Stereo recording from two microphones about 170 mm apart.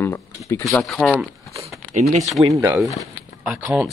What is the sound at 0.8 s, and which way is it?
Speech, centre (ahead or behind).